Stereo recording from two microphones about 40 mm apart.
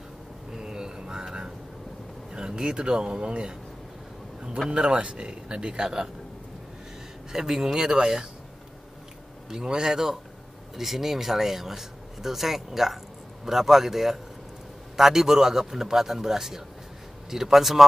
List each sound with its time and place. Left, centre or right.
0.5 s a sound: centre
2.3 s speech: right
4.6 s speech: right
7.3 s speech: centre
9.5 s a man's voice: centre